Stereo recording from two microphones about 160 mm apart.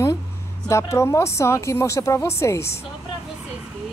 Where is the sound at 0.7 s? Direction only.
15° left (ahead or behind).